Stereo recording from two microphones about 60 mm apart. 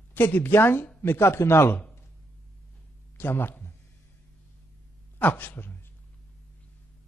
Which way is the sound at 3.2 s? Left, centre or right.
Left.